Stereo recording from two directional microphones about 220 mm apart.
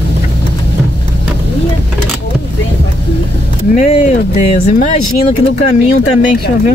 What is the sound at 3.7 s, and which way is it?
Speech, 30° left (ahead or behind).